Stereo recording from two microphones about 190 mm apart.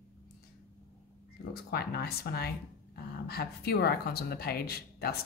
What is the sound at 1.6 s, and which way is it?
A woman's voice, 55° left (ahead or behind).